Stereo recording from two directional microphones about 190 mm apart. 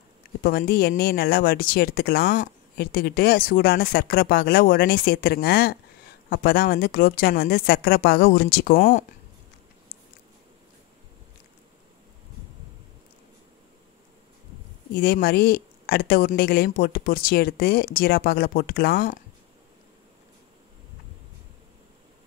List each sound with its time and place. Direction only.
0.4 s speech: 50° left (ahead or behind)
15.0 s speech: 55° left (ahead or behind)